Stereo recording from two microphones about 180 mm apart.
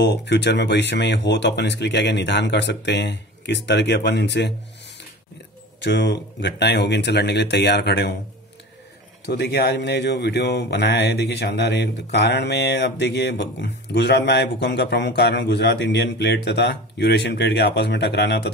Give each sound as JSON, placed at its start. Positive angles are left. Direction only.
{"t": 0.0, "sound": "speech", "side_deg": 70}
{"t": 5.8, "sound": "speech", "side_deg": 75}
{"t": 9.2, "sound": "speech", "side_deg": 65}